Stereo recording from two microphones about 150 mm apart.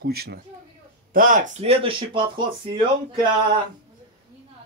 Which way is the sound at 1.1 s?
65° right (ahead or behind).